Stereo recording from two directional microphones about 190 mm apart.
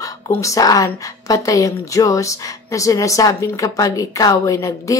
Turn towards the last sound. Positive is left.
turn(degrees=15)  # may be behind; listen again after turning